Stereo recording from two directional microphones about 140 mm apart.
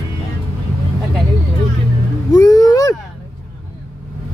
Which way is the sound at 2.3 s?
25° left (ahead or behind).